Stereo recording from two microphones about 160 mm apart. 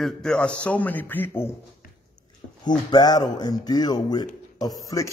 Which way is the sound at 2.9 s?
25° left (ahead or behind).